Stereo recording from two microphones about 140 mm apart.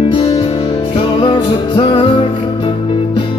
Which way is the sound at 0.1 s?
35° left (ahead or behind).